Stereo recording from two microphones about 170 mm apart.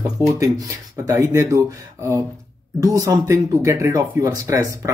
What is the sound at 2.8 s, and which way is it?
Speech, 20° right (ahead or behind).